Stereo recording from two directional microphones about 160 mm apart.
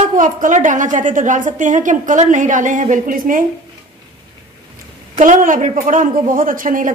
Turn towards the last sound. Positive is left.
turn(degrees=-60)  # may be behind; listen again after turning